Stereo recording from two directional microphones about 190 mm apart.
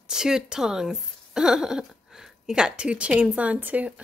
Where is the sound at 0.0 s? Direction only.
5° right (ahead or behind).